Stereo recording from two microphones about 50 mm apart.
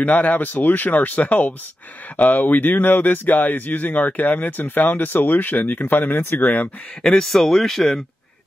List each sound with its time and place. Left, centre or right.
0.0 s speech: left
7.0 s speech: centre